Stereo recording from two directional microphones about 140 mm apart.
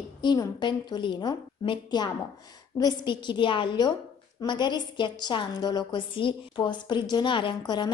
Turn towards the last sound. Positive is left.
turn(degrees=35)  # may be behind; listen again after turning